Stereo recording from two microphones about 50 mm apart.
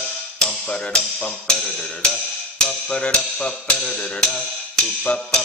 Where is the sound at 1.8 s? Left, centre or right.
Centre.